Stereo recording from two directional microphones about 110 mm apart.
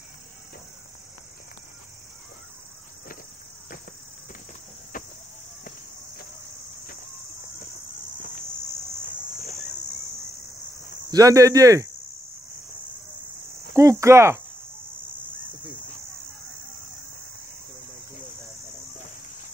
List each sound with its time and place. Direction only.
11.1 s speech: 35° right (ahead or behind)
13.7 s speech: 25° right (ahead or behind)